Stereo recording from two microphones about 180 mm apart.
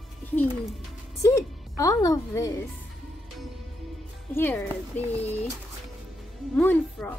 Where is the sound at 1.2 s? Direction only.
15° left (ahead or behind).